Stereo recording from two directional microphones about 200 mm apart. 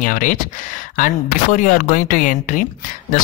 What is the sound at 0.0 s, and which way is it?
Speech, 40° left (ahead or behind).